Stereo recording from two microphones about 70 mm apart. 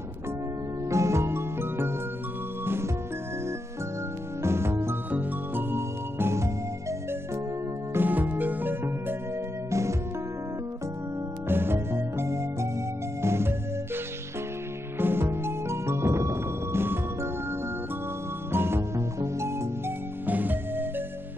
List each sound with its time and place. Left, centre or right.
0.8 s music: right
4.4 s music: right
7.9 s music: right
9.7 s music: right
11.4 s music: right
15.0 s music: right
20.2 s music: right